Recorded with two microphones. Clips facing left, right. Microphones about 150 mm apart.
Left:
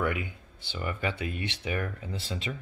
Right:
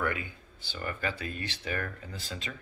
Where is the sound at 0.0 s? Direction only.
20° left (ahead or behind).